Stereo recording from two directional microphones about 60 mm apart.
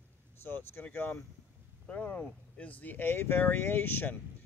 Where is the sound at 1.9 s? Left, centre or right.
Centre.